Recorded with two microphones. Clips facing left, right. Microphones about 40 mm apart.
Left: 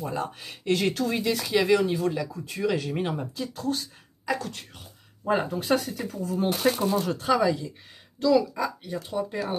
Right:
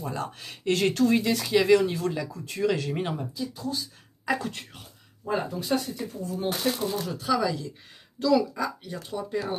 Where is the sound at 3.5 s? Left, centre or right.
Left.